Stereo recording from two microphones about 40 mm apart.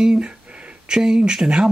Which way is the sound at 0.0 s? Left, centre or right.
Right.